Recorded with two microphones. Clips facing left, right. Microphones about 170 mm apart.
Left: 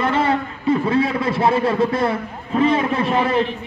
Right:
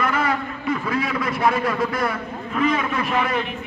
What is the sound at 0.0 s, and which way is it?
A man's voice, 30° left (ahead or behind).